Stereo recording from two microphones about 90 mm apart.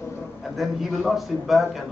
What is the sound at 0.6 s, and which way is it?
A man's voice, centre (ahead or behind).